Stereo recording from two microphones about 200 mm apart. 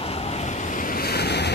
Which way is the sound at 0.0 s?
30° left (ahead or behind).